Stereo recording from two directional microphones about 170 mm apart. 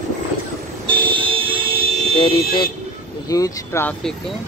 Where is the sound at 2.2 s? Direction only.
30° left (ahead or behind).